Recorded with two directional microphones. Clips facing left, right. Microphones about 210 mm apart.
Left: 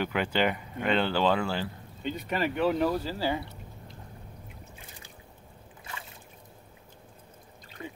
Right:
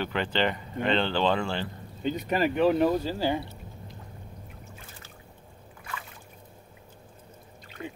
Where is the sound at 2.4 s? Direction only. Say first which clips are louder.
Right 4 dB; 15° right (ahead or behind).